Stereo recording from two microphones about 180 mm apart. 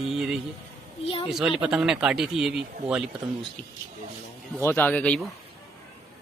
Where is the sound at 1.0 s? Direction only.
30° left (ahead or behind).